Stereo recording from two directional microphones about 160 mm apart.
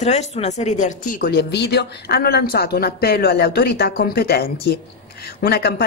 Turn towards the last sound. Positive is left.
turn(degrees=75)  # may be behind; listen again after turning